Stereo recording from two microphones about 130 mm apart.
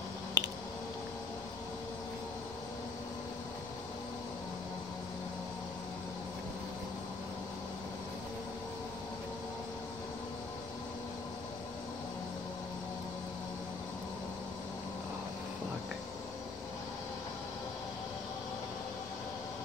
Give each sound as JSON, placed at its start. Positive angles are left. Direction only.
{"t": 0.4, "sound": "squish", "side_deg": -30}